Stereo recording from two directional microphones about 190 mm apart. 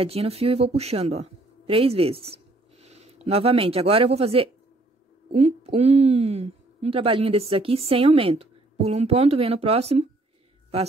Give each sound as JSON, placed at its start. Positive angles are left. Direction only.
{"t": 0.0, "sound": "speech", "side_deg": -30}